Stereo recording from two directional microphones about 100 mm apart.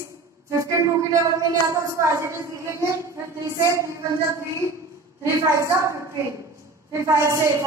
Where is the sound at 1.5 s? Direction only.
30° right (ahead or behind).